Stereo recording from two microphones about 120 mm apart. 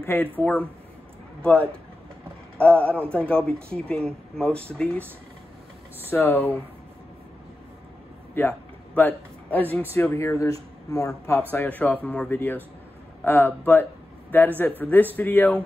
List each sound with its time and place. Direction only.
0.0 s a man's voice: 20° left (ahead or behind)
6.0 s speech: 15° left (ahead or behind)
8.4 s a man's voice: 15° left (ahead or behind)
11.5 s speech: 15° left (ahead or behind)